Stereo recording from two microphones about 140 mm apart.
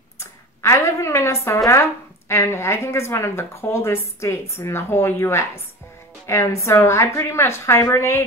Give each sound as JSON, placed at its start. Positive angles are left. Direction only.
{"t": 0.2, "sound": "a woman's voice", "side_deg": 20}